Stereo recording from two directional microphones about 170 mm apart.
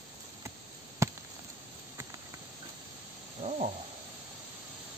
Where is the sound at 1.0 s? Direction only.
15° right (ahead or behind).